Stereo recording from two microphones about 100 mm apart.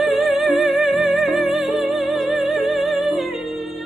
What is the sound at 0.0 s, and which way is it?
Music, centre (ahead or behind).